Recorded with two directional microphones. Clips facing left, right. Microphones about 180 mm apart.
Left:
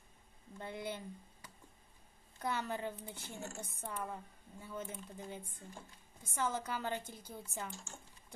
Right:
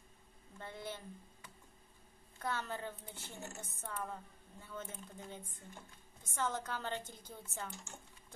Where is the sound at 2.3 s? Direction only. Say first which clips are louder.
Left 2 dB; 15° left (ahead or behind).